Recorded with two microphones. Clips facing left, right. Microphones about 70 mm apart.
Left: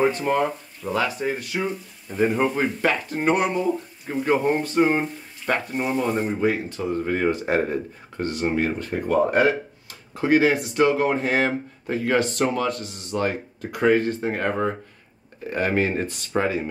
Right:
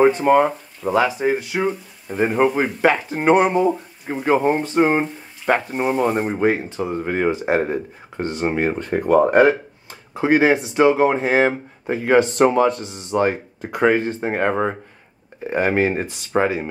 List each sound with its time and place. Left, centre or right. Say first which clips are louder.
0.2 s speech: right 7 dB; right
5.0 s speech: right 5 dB; centre
5.8 s speech: right 4 dB; right
6.9 s speech: right 1 dB; centre
9.2 s speech: right 4 dB; right
10.1 s speech: right 3 dB; right